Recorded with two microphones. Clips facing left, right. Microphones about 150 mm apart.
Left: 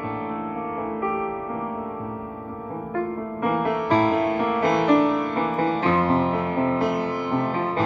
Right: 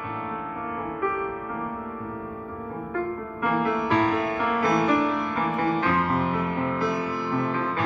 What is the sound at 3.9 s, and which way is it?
Music, 30° left (ahead or behind).